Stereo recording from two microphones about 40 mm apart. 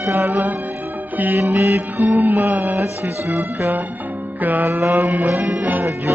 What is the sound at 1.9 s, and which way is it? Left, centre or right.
Music, right.